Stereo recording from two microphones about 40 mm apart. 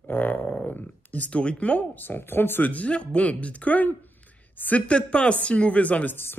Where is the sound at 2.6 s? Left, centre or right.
Left.